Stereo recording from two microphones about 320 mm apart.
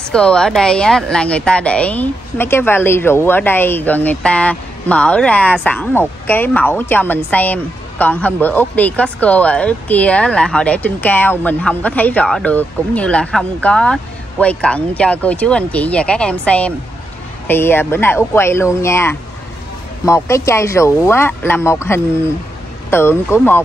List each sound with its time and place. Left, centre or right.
0.1 s speech: centre